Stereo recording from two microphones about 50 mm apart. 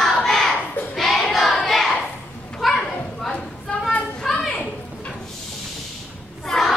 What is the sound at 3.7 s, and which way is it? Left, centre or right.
Children playing, left.